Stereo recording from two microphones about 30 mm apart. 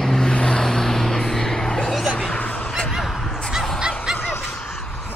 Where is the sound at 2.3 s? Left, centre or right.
Left.